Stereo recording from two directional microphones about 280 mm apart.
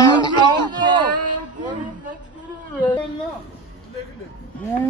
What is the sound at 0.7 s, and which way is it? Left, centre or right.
Speech, centre.